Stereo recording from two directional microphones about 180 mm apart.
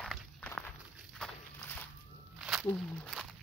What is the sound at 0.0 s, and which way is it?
Walk, 5° left (ahead or behind).